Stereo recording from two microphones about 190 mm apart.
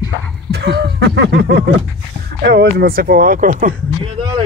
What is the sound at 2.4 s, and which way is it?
Speech, 60° right (ahead or behind).